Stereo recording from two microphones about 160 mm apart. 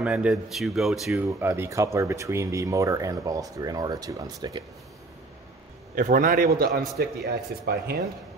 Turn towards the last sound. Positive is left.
turn(degrees=-75)  # may be behind; listen again after turning